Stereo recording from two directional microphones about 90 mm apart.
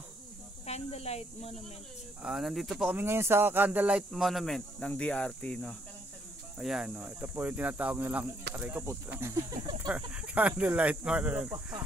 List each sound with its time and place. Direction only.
2.2 s speech: 5° right (ahead or behind)
2.9 s speech: 25° right (ahead or behind)
4.1 s speech: centre (ahead or behind)
6.6 s speech: 5° right (ahead or behind)
7.1 s speech: 20° right (ahead or behind)
8.8 s speech: 30° right (ahead or behind)
9.9 s speech: 15° right (ahead or behind)